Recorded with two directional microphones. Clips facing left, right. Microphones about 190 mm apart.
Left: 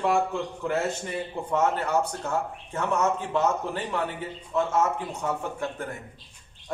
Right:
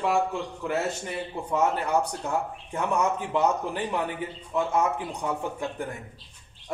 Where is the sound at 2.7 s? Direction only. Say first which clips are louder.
Even; 15° right (ahead or behind).